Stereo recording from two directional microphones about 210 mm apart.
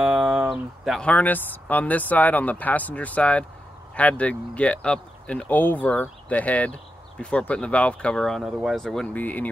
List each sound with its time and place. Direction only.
0.0 s speech: 5° right (ahead or behind)